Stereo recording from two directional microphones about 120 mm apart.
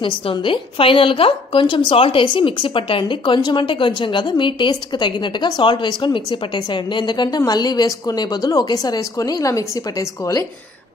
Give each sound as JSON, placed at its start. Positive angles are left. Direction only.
{"t": 0.0, "sound": "a woman's voice", "side_deg": 45}